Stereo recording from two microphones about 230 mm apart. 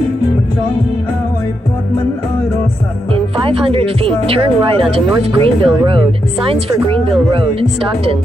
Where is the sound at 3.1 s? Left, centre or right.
Right.